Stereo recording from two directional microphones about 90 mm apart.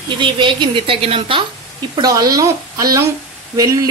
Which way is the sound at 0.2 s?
65° right (ahead or behind).